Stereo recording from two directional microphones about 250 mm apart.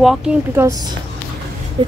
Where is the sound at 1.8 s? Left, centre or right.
Right.